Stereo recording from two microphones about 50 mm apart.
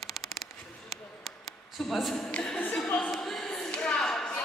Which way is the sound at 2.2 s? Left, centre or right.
Centre.